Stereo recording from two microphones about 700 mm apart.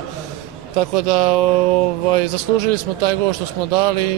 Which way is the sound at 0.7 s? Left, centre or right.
Right.